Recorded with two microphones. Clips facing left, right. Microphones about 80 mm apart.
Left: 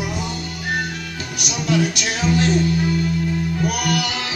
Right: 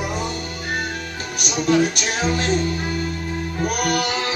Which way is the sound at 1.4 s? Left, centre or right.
Right.